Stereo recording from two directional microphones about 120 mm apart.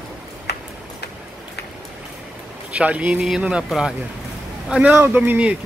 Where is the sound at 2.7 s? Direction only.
10° right (ahead or behind).